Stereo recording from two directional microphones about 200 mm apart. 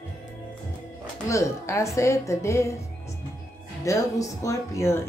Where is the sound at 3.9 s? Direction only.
15° left (ahead or behind).